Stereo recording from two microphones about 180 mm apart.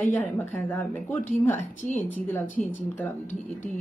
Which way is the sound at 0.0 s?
10° left (ahead or behind).